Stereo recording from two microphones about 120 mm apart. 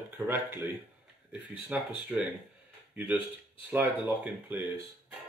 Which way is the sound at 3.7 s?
15° right (ahead or behind).